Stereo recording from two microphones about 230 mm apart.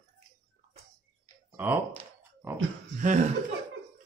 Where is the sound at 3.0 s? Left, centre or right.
Right.